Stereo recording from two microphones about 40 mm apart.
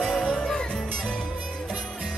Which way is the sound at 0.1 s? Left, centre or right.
Centre.